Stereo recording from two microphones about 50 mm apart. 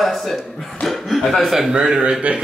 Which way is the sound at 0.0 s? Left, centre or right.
Centre.